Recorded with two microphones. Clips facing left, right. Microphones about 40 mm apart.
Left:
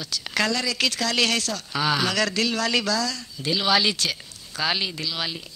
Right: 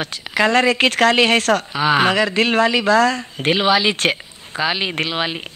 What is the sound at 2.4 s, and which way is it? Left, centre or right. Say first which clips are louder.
Speech: right 8 dB; right.